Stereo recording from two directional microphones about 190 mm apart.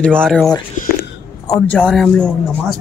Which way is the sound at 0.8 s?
45° left (ahead or behind).